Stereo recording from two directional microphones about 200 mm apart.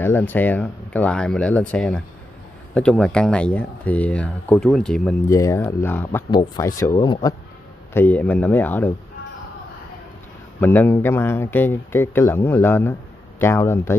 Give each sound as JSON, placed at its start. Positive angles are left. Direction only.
{"t": 0.0, "sound": "speech", "side_deg": 10}
{"t": 5.3, "sound": "speech", "side_deg": 15}
{"t": 7.9, "sound": "speech", "side_deg": 10}
{"t": 10.6, "sound": "speech", "side_deg": 10}